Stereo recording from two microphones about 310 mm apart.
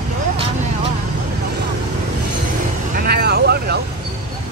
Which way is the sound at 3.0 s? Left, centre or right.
Right.